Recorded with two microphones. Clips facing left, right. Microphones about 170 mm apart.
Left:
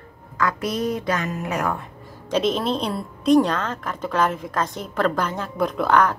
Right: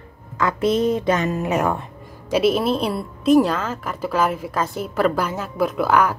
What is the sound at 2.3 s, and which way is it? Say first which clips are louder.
A woman's voice: right 3 dB; 10° right (ahead or behind).